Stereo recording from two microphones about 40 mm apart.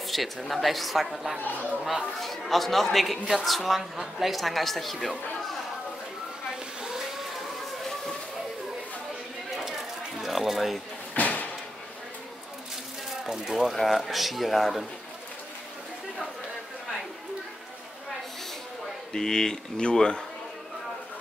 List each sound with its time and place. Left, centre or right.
0.0 s a woman's voice: centre
1.4 s speech: left
2.1 s a woman's voice: centre
6.8 s vehicle: centre
9.6 s a sound: centre
11.1 s a sound: left
13.2 s a woman's voice: centre
19.1 s speech: centre